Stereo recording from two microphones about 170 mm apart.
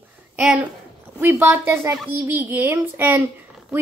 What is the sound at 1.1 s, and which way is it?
A woman's voice, 15° right (ahead or behind).